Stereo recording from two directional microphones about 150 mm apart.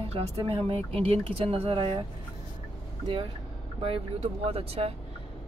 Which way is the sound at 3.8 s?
40° right (ahead or behind).